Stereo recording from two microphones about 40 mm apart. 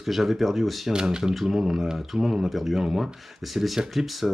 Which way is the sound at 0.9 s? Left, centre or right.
Centre.